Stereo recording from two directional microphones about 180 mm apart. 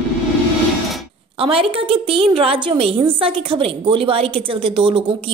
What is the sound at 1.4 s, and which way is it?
A woman's voice, 30° right (ahead or behind).